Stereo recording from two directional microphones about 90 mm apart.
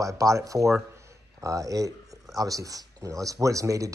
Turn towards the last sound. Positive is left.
turn(degrees=-40)  # may be behind; listen again after turning